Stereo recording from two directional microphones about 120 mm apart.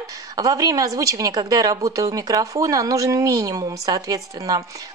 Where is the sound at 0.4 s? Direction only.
30° right (ahead or behind).